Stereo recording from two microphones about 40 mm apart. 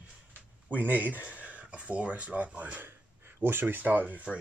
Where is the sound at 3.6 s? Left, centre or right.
Right.